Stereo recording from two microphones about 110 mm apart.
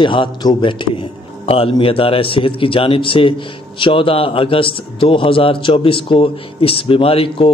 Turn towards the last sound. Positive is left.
turn(degrees=50)  # may be behind; listen again after turning